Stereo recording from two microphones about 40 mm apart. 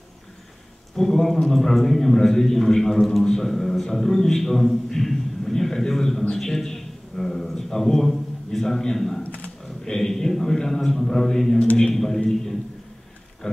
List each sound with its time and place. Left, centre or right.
0.9 s a man's voice: centre
9.2 s a sound: left
9.8 s a man's voice: centre